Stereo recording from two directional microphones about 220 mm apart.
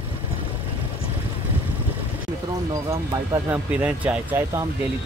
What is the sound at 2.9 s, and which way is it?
Speech, 10° right (ahead or behind).